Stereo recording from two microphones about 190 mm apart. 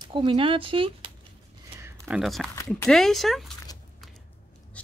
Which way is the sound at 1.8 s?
10° right (ahead or behind).